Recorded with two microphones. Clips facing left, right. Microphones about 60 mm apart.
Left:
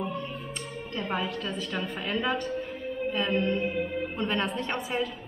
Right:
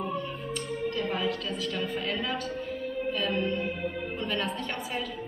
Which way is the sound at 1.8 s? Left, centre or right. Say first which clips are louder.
Left 2 dB; centre.